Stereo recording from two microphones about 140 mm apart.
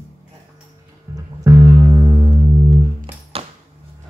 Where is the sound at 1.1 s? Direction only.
20° right (ahead or behind).